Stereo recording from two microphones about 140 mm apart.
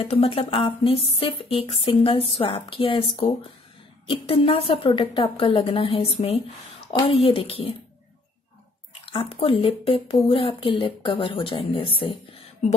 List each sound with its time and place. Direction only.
0.1 s speech: 45° left (ahead or behind)
4.1 s a woman's voice: 40° left (ahead or behind)
9.1 s speech: 40° left (ahead or behind)